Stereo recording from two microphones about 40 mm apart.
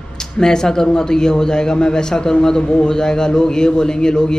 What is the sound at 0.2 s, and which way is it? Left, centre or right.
Speech, centre.